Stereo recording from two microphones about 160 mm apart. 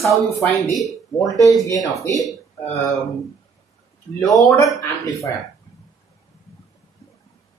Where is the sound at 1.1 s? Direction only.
20° left (ahead or behind).